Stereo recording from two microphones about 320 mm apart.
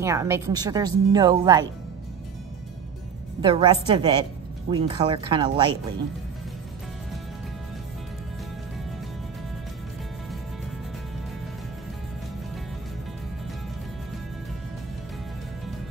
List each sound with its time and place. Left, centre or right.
0.0 s a woman's voice: centre
3.3 s a woman's voice: centre